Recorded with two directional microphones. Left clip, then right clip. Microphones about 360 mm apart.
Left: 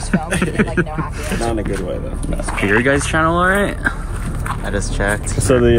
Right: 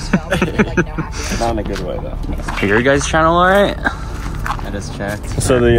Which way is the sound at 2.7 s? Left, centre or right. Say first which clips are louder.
Right 2 dB; centre.